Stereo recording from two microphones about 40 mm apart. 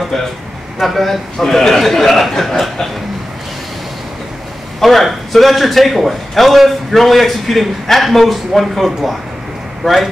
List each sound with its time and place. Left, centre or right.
0.7 s a man's voice: centre
4.7 s a man's voice: centre
9.8 s speech: centre